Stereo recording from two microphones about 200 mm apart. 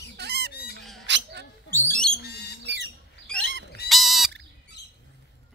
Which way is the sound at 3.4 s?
65° right (ahead or behind).